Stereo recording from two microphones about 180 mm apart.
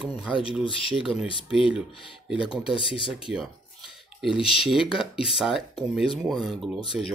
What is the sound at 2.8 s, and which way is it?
Speech, 30° left (ahead or behind).